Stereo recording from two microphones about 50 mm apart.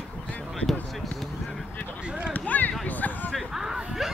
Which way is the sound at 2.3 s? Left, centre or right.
Left.